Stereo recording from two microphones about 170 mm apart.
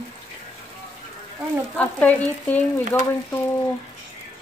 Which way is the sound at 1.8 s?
10° left (ahead or behind).